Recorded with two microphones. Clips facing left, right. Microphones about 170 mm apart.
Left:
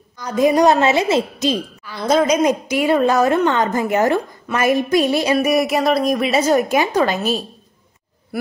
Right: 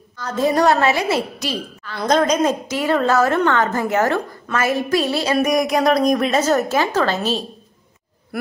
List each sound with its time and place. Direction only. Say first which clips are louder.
0.2 s a woman's voice: left 3 dB; 15° left (ahead or behind)
2.0 s a woman's voice: left 1 dB; 5° left (ahead or behind)